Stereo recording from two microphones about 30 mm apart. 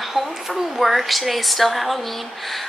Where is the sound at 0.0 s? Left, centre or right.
Centre.